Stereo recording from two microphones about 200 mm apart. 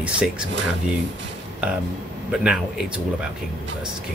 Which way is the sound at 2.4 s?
5° right (ahead or behind).